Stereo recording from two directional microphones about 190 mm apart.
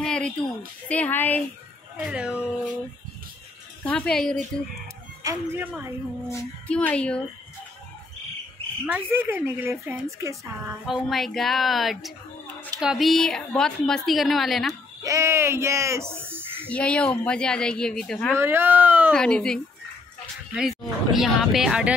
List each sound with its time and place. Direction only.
0.0 s a sound: 5° left (ahead or behind)
0.8 s speech: 10° left (ahead or behind)
2.0 s a woman's voice: 5° right (ahead or behind)
3.8 s a woman's voice: 5° left (ahead or behind)
5.2 s a woman's voice: 10° right (ahead or behind)
6.2 s speech: 10° left (ahead or behind)
8.8 s a woman's voice: 10° right (ahead or behind)
11.1 s a woman's voice: centre (ahead or behind)
15.0 s speech: 15° right (ahead or behind)
16.6 s a woman's voice: 5° left (ahead or behind)
18.3 s a woman's voice: 15° right (ahead or behind)
19.1 s a woman's voice: 5° left (ahead or behind)